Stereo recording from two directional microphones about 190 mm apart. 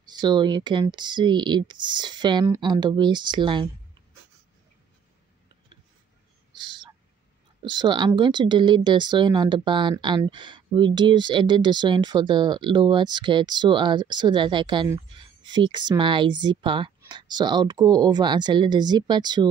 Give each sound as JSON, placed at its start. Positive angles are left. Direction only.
{"t": 0.0, "sound": "speech", "side_deg": -20}
{"t": 6.5, "sound": "owl", "side_deg": -25}
{"t": 7.6, "sound": "speech", "side_deg": -25}